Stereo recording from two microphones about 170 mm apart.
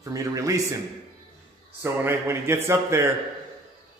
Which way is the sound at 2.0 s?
15° right (ahead or behind).